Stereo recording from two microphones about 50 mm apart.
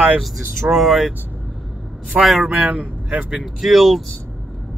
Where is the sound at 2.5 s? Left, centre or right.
Right.